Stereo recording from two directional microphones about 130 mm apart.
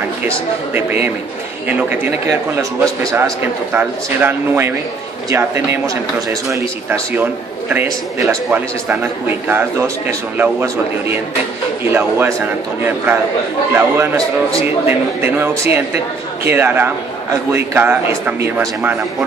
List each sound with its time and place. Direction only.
0.7 s a man's voice: 15° right (ahead or behind)
8.3 s a man's voice: 15° right (ahead or behind)
13.7 s a man's voice: 20° right (ahead or behind)